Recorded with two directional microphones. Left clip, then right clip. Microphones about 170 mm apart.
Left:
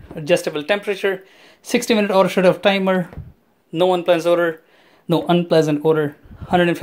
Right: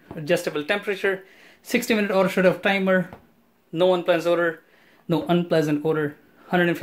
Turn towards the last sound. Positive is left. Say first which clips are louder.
# left 5 dB
turn(degrees=25)  # may be behind; listen again after turning